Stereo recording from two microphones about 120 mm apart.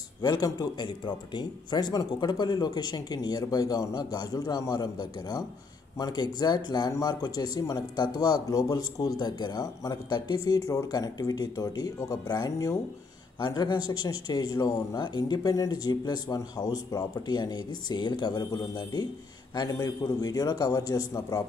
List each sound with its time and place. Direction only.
0.2 s speech: 30° left (ahead or behind)